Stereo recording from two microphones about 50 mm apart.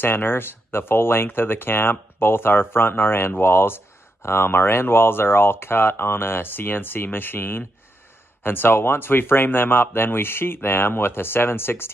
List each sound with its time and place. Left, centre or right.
0.0 s speech: left